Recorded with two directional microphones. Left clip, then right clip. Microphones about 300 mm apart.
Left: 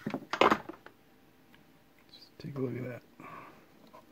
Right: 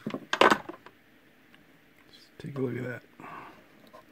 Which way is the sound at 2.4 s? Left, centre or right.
Centre.